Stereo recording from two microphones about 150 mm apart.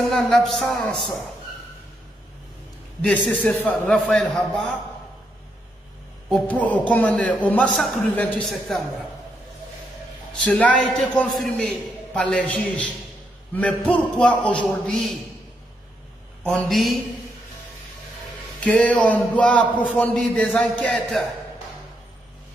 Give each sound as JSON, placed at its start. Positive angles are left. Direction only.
{"t": 0.1, "sound": "a man's voice", "side_deg": 0}
{"t": 3.0, "sound": "a man's voice", "side_deg": 10}
{"t": 6.3, "sound": "a man's voice", "side_deg": 10}
{"t": 10.3, "sound": "a man's voice", "side_deg": 10}
{"t": 16.4, "sound": "a man's voice", "side_deg": 5}
{"t": 18.6, "sound": "a man's voice", "side_deg": 5}